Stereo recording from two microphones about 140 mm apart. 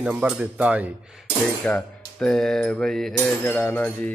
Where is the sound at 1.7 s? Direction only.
5° left (ahead or behind).